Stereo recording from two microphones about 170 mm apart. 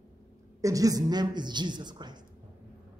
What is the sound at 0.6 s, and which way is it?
A man's voice, 20° right (ahead or behind).